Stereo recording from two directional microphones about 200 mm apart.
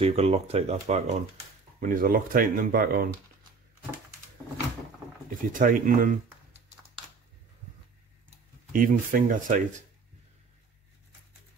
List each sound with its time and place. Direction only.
0.0 s speech: 30° right (ahead or behind); by 3.1 s 45° right (ahead or behind)
5.5 s speech: 40° right (ahead or behind)
8.7 s speech: 45° right (ahead or behind)